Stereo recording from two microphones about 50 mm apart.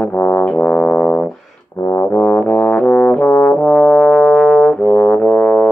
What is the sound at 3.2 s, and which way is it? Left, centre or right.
Brass instrument, left.